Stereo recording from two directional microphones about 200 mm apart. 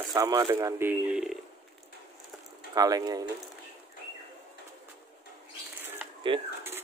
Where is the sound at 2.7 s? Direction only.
20° right (ahead or behind).